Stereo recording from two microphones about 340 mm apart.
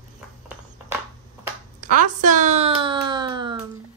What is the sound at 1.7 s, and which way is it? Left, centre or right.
Speech, right.